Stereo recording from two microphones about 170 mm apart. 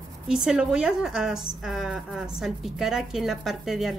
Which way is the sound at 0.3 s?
5° right (ahead or behind).